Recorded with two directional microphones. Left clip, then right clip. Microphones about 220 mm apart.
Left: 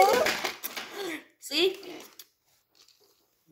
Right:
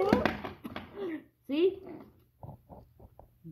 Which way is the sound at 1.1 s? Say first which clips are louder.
Left 3 dB; 40° left (ahead or behind).